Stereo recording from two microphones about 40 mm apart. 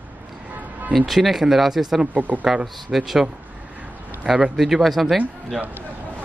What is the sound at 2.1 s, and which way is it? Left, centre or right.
Speech, right.